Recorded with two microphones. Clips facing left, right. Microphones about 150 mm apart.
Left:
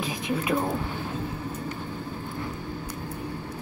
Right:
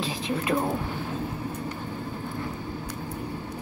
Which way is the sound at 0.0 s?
15° left (ahead or behind).